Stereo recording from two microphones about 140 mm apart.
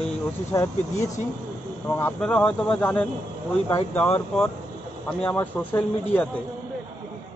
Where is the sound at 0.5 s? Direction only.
20° left (ahead or behind).